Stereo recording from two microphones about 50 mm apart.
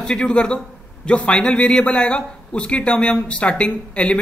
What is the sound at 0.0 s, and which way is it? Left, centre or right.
Speech, centre.